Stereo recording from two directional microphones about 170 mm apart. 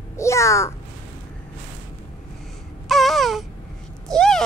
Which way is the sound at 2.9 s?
Centre (ahead or behind).